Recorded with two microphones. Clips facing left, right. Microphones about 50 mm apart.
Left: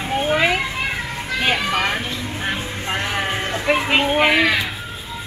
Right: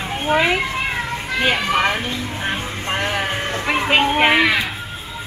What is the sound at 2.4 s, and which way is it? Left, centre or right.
Music, centre.